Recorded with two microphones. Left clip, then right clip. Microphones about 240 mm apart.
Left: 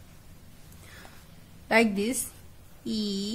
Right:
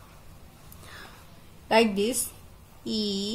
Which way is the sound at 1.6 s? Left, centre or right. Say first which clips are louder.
Right 2 dB; centre.